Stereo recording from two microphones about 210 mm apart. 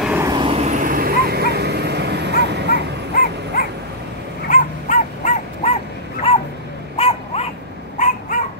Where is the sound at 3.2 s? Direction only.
55° right (ahead or behind).